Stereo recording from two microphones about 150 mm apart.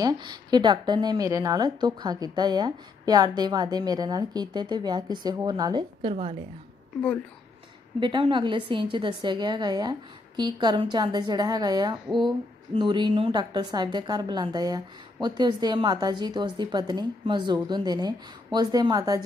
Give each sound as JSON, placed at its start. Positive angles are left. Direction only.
{"t": 0.0, "sound": "a woman's voice", "side_deg": -30}
{"t": 8.0, "sound": "a woman's voice", "side_deg": -35}
{"t": 12.1, "sound": "speech", "side_deg": 0}
{"t": 12.7, "sound": "a woman's voice", "side_deg": -30}